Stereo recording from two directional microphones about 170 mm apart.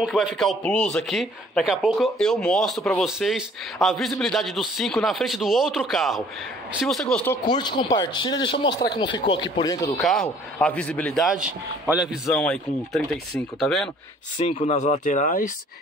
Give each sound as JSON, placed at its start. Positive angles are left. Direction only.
{"t": 0.0, "sound": "speech", "side_deg": 0}
{"t": 7.4, "sound": "a man's voice", "side_deg": 25}
{"t": 8.6, "sound": "speech", "side_deg": 75}
{"t": 9.0, "sound": "a man's voice", "side_deg": 30}
{"t": 9.9, "sound": "speech", "side_deg": 0}
{"t": 14.4, "sound": "speech", "side_deg": 40}